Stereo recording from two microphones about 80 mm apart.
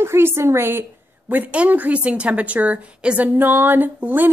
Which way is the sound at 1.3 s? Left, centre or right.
Right.